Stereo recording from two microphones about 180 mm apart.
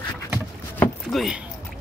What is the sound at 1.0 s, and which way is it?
Speech, centre (ahead or behind).